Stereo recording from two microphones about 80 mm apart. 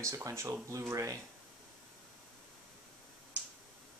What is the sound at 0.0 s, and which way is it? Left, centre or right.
Speech, right.